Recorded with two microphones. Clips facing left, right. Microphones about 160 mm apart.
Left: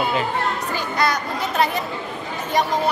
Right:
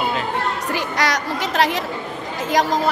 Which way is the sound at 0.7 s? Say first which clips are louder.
Even; 90° right.